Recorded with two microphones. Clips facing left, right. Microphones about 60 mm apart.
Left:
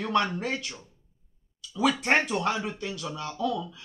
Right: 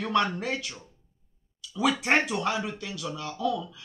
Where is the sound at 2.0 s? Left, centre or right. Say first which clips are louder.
Even; centre.